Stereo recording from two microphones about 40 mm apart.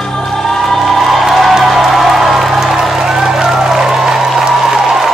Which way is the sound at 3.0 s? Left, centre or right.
Centre.